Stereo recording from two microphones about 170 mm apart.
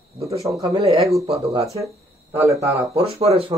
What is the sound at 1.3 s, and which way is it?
Speech, 35° right (ahead or behind).